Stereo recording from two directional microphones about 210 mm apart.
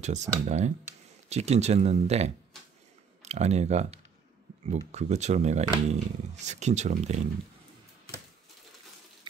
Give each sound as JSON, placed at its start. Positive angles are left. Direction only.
{"t": 0.0, "sound": "speech", "side_deg": -35}